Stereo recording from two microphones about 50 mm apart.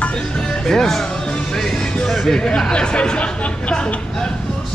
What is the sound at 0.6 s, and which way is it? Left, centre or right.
Speech, centre.